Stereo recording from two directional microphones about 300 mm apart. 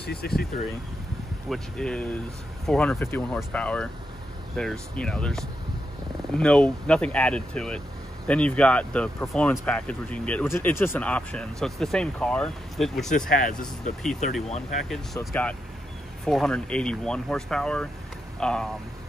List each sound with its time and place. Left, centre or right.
0.0 s speech: left
1.5 s speech: centre
13.3 s speech: left
14.9 s speech: centre